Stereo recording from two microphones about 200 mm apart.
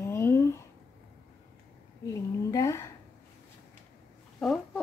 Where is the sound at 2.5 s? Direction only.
15° left (ahead or behind).